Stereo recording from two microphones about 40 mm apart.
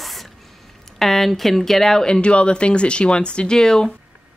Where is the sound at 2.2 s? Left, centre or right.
Left.